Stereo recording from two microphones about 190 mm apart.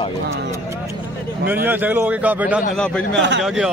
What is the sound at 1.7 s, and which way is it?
Speech, 10° right (ahead or behind).